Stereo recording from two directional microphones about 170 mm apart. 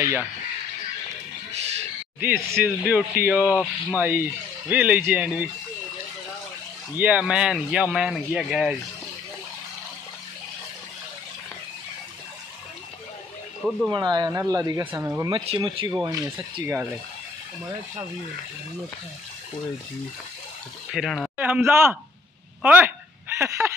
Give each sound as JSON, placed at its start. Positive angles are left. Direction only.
{"t": 0.0, "sound": "speech", "side_deg": -15}
{"t": 2.1, "sound": "speech", "side_deg": -10}
{"t": 7.0, "sound": "speech", "side_deg": -5}
{"t": 13.6, "sound": "speech", "side_deg": -5}
{"t": 13.9, "sound": "speech", "side_deg": -25}
{"t": 15.4, "sound": "speech", "side_deg": -30}
{"t": 20.9, "sound": "speech", "side_deg": 0}
{"t": 21.4, "sound": "speech", "side_deg": -10}
{"t": 22.6, "sound": "a sound", "side_deg": -10}